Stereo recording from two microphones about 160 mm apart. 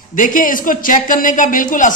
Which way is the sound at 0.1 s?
55° left (ahead or behind).